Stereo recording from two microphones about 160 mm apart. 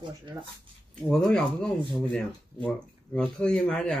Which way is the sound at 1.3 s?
5° left (ahead or behind).